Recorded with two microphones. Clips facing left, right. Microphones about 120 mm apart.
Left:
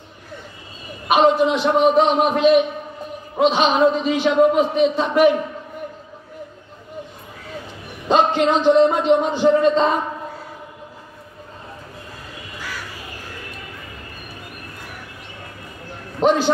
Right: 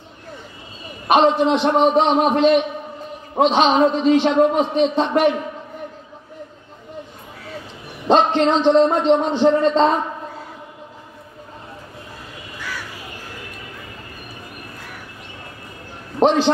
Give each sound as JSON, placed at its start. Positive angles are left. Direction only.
{"t": 1.1, "sound": "a man's voice", "side_deg": 5}
{"t": 8.3, "sound": "a man's voice", "side_deg": 5}
{"t": 16.2, "sound": "a sound", "side_deg": -50}